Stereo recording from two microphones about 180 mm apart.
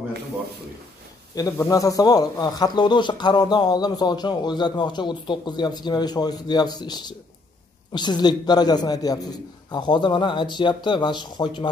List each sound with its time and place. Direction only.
1.3 s a man's voice: 20° left (ahead or behind)